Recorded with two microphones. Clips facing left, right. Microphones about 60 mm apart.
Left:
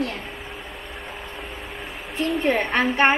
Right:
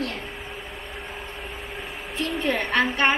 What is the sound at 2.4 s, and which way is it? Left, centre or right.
Speech, left.